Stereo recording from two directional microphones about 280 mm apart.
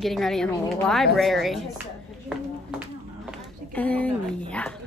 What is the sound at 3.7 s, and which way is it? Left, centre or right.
Speech, centre.